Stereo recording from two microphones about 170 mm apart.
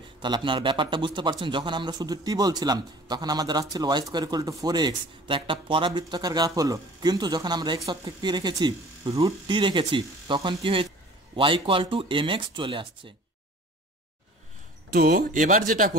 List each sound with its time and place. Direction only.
0.2 s speech: 30° right (ahead or behind)
14.9 s speech: 60° right (ahead or behind)